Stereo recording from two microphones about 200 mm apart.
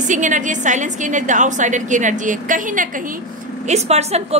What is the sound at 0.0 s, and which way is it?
A woman's voice, 40° right (ahead or behind).